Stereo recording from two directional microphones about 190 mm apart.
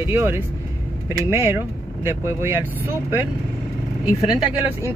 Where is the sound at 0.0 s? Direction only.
10° right (ahead or behind).